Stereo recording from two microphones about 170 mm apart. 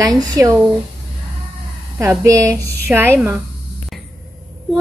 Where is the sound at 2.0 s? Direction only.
20° right (ahead or behind).